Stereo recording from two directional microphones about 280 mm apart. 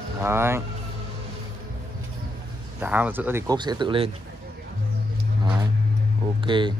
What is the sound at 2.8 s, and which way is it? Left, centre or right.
Speech, centre.